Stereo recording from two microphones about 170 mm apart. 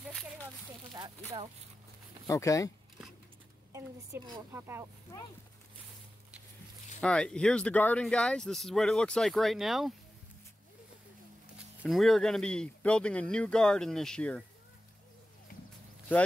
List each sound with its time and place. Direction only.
0.9 s a sound: 25° right (ahead or behind)
2.2 s speech: 20° left (ahead or behind)
3.7 s a woman's voice: 15° right (ahead or behind)
7.0 s speech: 5° left (ahead or behind)
11.8 s speech: centre (ahead or behind)